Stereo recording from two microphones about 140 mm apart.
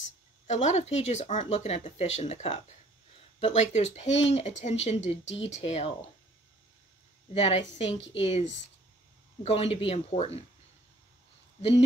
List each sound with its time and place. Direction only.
0.5 s speech: 55° left (ahead or behind)
7.3 s speech: 45° left (ahead or behind)